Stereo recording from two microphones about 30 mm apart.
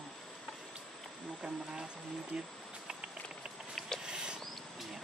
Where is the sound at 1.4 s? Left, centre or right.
Right.